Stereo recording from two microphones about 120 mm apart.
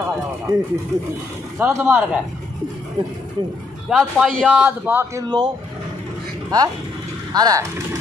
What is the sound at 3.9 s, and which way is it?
A man's voice, 5° right (ahead or behind).